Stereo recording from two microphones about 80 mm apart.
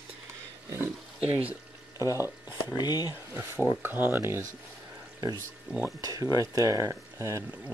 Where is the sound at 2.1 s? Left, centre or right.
Right.